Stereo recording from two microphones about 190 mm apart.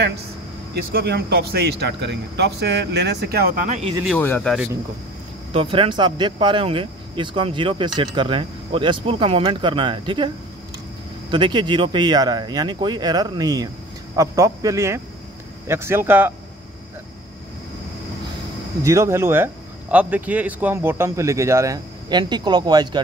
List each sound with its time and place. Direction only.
0.9 s speech: 60° right (ahead or behind); by 3.9 s 40° right (ahead or behind)
4.0 s speech: 5° left (ahead or behind)
5.5 s speech: 30° right (ahead or behind); by 16.3 s 10° right (ahead or behind)
18.8 s speech: 15° right (ahead or behind)